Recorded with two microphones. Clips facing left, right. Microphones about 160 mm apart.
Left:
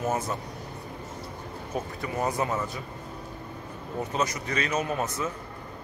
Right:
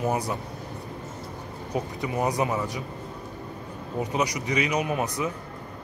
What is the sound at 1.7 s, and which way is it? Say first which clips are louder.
A man's voice: right 3 dB; 15° right (ahead or behind).